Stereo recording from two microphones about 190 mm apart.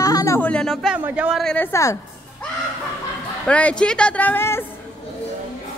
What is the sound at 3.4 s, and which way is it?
Speech, 5° left (ahead or behind).